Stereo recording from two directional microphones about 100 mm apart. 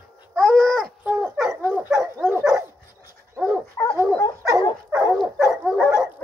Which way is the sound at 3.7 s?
30° left (ahead or behind).